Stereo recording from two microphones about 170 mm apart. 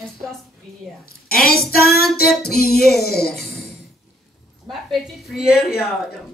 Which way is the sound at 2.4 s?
65° left (ahead or behind).